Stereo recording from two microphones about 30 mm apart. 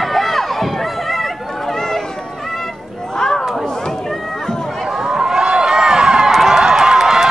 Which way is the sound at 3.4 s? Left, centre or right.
Centre.